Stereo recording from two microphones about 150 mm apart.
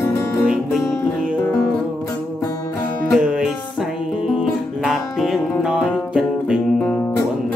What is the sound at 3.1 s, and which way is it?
Music, 5° right (ahead or behind).